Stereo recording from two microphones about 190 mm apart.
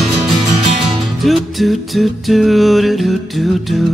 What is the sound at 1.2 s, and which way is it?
Music, centre (ahead or behind).